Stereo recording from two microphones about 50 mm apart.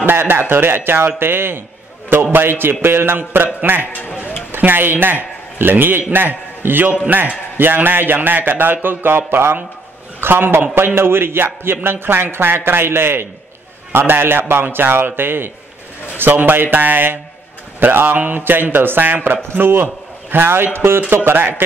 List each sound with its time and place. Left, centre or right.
0.0 s a man's voice: right